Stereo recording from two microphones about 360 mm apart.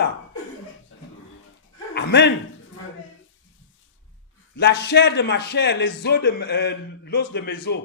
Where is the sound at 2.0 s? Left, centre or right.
Left.